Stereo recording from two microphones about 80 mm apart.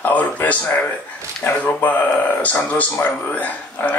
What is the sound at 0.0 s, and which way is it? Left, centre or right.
A man's voice, centre.